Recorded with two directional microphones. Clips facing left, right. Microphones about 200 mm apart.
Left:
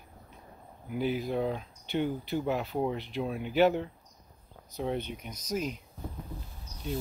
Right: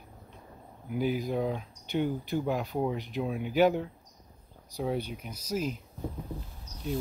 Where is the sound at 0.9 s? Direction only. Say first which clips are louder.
Right 1 dB; 45° right (ahead or behind).